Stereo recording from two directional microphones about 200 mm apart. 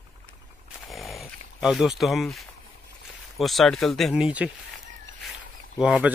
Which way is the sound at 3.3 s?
Centre (ahead or behind).